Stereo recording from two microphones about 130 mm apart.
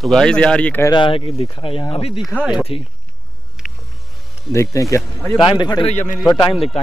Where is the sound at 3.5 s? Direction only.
Centre (ahead or behind).